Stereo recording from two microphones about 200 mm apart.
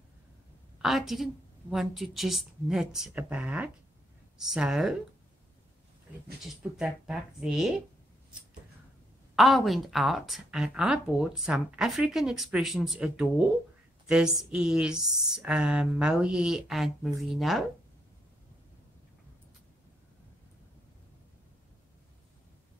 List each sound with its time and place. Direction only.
0.8 s a woman's voice: centre (ahead or behind)
6.4 s a woman's voice: centre (ahead or behind)
9.3 s a woman's voice: centre (ahead or behind)